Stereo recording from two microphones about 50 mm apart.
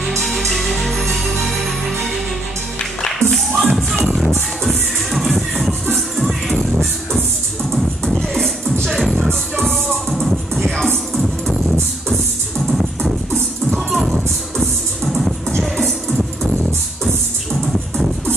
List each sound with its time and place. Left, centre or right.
0.0 s music: centre
3.0 s music: centre
6.8 s music: centre
8.8 s music: centre
9.3 s music: centre
10.0 s music: centre